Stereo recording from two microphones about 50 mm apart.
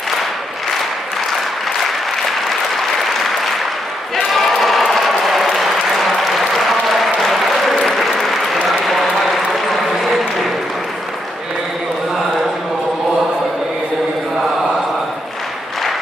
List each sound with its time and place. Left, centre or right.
2.7 s applause: centre